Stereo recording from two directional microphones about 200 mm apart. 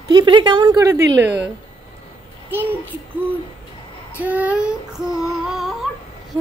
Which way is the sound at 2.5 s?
10° right (ahead or behind).